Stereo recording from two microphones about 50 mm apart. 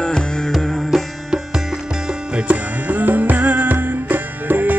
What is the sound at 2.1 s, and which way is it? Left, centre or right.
Music, right.